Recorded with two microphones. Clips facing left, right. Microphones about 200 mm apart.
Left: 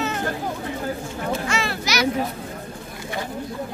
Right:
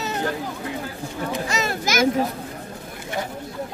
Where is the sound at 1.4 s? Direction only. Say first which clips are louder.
Right 1 dB; 45° right (ahead or behind).